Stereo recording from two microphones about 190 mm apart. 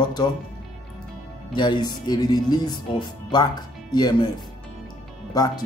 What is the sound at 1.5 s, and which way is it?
Speech, 25° left (ahead or behind).